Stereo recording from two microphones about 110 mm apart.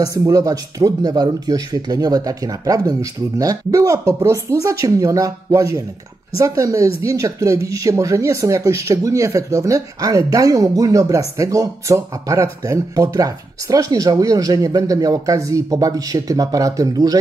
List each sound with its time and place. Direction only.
0.0 s speech: 30° right (ahead or behind)